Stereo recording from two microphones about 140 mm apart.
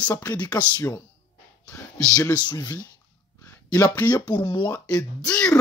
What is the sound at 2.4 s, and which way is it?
Speech, 30° left (ahead or behind).